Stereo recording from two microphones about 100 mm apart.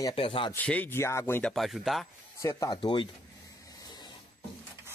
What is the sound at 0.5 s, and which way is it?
Speech, 15° left (ahead or behind).